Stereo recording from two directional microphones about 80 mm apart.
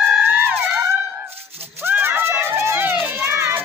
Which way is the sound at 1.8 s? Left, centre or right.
Right.